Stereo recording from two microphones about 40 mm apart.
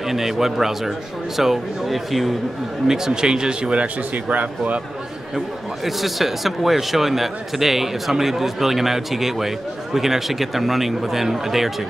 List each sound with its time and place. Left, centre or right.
0.0 s speech: centre
3.1 s speech: centre
3.8 s speech: right
5.9 s a man's voice: centre